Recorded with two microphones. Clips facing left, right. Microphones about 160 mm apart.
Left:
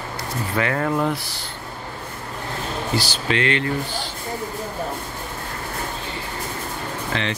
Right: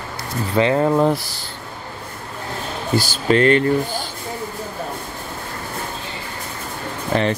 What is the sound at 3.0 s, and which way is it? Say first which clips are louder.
Speech: right 10 dB; 45° right (ahead or behind).